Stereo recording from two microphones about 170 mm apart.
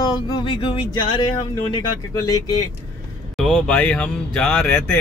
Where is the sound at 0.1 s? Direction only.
30° left (ahead or behind).